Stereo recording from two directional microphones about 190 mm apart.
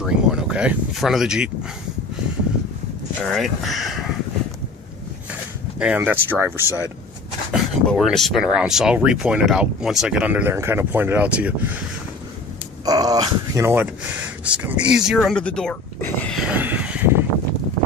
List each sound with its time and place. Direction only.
0.0 s a sound: 5° right (ahead or behind)
3.3 s speech: centre (ahead or behind)
5.8 s speech: 10° right (ahead or behind)
7.5 s speech: centre (ahead or behind)
12.8 s speech: 20° right (ahead or behind); by 16.3 s 10° left (ahead or behind)
16.3 s vehicle: 5° right (ahead or behind)